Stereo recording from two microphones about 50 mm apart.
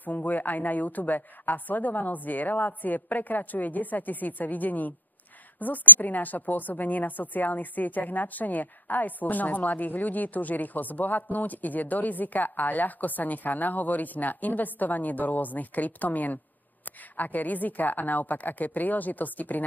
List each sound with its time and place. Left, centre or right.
0.0 s a woman's voice: left